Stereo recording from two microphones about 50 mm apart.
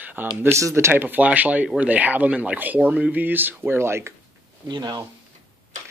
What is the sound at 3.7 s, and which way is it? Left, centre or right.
Speech, right.